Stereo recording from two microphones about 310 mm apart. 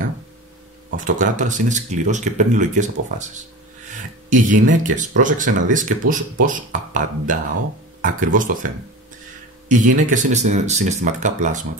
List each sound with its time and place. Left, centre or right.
0.9 s speech: right
4.3 s speech: right